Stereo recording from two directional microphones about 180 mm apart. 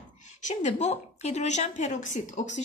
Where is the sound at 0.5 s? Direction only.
40° left (ahead or behind).